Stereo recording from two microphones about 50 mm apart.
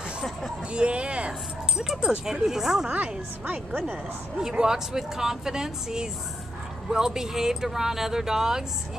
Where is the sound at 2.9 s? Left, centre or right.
Right.